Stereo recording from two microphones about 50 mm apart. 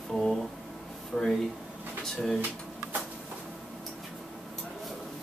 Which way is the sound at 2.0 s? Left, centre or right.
Centre.